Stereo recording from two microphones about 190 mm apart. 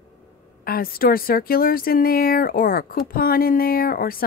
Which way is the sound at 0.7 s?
50° left (ahead or behind).